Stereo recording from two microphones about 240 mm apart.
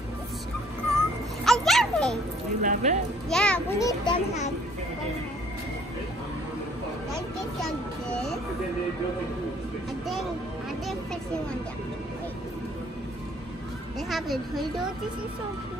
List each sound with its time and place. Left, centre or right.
0.9 s cat: centre
2.6 s speech: right
3.3 s speech: centre
4.0 s a child's voice: left
14.0 s speech: centre